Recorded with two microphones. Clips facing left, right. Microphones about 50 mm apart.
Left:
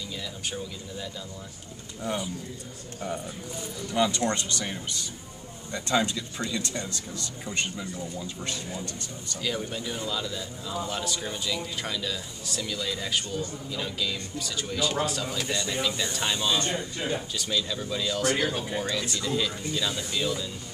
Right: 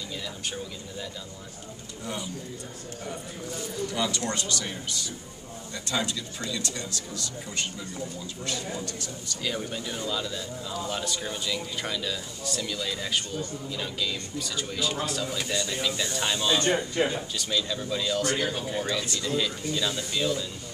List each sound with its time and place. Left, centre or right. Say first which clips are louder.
3.9 s speech: left 6 dB; centre
9.4 s speech: left 1 dB; centre
17.0 s speech: right 6 dB; right
17.4 s speech: even; centre